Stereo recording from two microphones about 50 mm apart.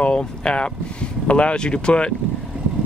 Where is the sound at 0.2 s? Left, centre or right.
Centre.